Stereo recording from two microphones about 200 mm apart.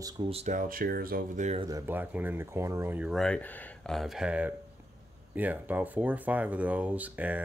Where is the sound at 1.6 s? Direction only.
15° right (ahead or behind).